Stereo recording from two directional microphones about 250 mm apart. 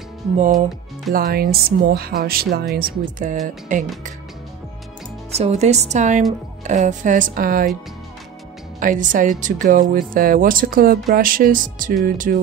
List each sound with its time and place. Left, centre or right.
1.1 s speech: right
5.3 s speech: right
8.7 s speech: right